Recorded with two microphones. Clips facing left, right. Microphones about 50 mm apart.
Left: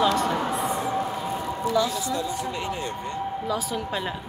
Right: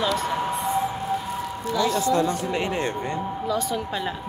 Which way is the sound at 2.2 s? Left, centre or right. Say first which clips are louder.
Right 4 dB; right.